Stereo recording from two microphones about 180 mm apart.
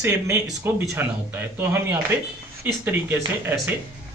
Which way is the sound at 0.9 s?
10° right (ahead or behind).